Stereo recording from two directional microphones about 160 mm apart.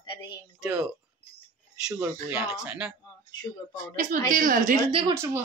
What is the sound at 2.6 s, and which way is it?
Speech, 5° right (ahead or behind).